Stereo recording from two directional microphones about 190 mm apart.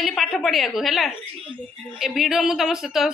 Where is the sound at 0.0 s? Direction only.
Centre (ahead or behind).